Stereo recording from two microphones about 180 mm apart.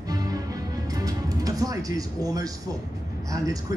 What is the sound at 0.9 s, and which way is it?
Speech, 20° right (ahead or behind).